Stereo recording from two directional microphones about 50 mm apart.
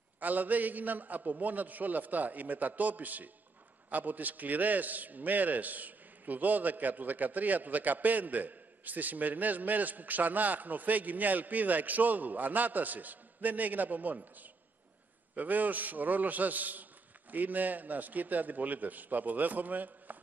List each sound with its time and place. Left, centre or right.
0.2 s a man's voice: right